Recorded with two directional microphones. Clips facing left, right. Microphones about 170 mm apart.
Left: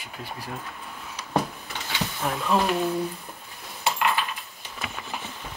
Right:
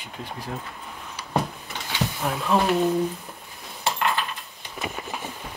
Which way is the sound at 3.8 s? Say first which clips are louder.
Even; centre (ahead or behind).